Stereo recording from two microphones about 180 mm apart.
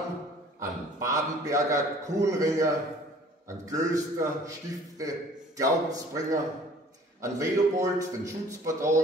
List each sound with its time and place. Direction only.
0.6 s a man's voice: 20° right (ahead or behind)